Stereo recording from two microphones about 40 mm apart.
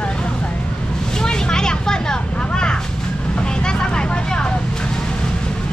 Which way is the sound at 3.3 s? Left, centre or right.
Left.